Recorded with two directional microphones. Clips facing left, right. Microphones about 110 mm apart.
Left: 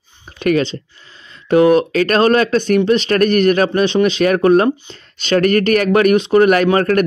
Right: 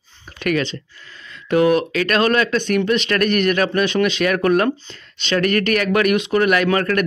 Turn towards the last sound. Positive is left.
turn(degrees=35)  # may be behind; listen again after turning